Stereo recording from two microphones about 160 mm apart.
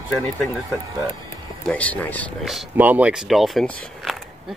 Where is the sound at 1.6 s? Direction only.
10° left (ahead or behind).